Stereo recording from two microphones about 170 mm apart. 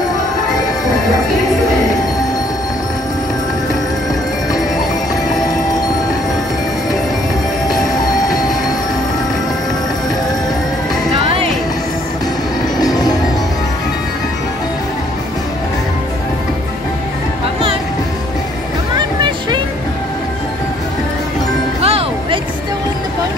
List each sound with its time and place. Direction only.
12.7 s music: 25° left (ahead or behind)
18.9 s music: 25° right (ahead or behind)
21.8 s music: 35° right (ahead or behind)